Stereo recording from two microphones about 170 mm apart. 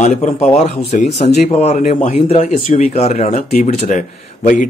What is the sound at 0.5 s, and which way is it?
Speech, 40° left (ahead or behind).